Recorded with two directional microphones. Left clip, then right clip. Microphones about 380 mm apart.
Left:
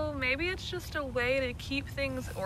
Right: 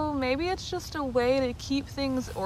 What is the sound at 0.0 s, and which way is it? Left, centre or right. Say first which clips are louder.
Speech: right 3 dB; centre.